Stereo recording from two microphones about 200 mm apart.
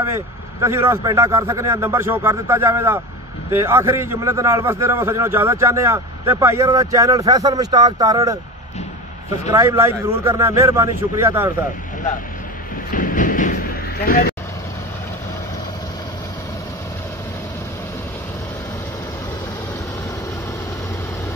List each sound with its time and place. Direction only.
0.1 s a man's voice: 15° right (ahead or behind)
9.5 s a man's voice: 15° right (ahead or behind)
12.9 s a sound: 40° left (ahead or behind)
14.0 s speech: 45° left (ahead or behind)